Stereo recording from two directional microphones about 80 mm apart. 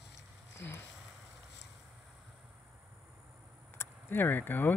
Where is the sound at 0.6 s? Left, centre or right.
Left.